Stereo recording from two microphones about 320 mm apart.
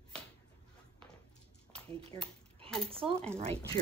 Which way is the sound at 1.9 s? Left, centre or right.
Centre.